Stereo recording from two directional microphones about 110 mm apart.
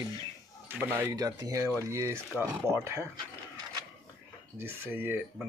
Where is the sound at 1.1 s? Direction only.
30° right (ahead or behind).